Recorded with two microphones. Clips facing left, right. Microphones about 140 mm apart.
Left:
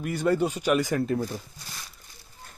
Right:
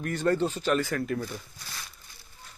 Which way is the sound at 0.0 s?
10° left (ahead or behind).